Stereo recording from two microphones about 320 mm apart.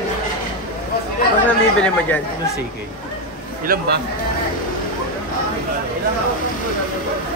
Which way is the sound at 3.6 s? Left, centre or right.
Right.